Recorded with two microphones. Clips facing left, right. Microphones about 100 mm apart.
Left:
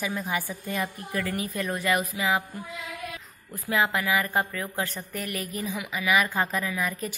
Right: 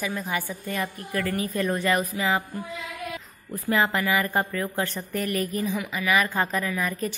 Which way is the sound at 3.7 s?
5° left (ahead or behind).